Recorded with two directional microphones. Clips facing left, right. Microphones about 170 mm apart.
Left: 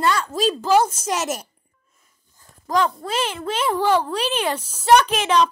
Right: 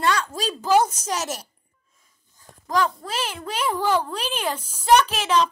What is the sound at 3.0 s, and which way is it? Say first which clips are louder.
A child's voice: left 5 dB; 10° right (ahead or behind).